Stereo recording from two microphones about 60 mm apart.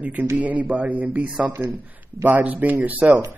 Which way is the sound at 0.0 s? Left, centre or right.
Right.